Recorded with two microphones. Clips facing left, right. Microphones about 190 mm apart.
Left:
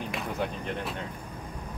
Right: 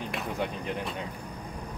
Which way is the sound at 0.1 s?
Centre (ahead or behind).